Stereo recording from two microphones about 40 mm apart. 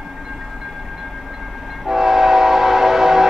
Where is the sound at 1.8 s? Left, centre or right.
Centre.